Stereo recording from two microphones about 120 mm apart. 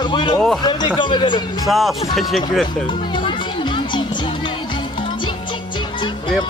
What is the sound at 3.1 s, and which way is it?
Music, 40° left (ahead or behind).